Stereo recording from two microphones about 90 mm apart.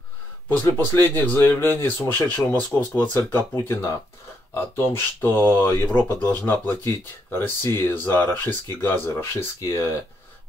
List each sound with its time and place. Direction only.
0.5 s speech: 20° left (ahead or behind)